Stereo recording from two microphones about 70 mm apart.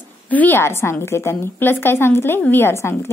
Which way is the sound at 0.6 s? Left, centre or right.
Left.